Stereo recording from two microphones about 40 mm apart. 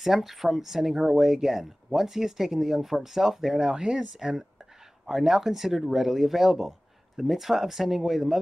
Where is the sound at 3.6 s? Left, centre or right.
Centre.